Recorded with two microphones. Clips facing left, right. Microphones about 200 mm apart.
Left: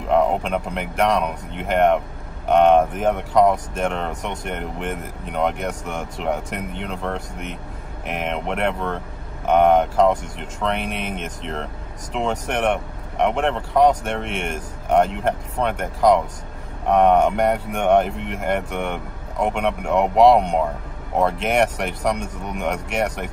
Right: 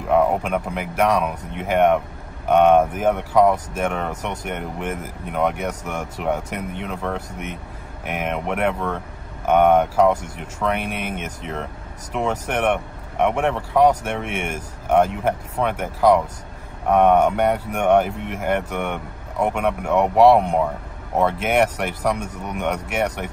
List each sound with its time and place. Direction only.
0.1 s speech: 5° right (ahead or behind)